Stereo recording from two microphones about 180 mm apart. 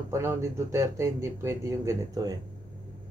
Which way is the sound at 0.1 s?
15° right (ahead or behind).